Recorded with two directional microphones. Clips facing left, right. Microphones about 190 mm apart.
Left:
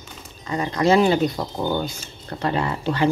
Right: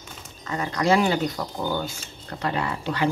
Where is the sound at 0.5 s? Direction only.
25° left (ahead or behind).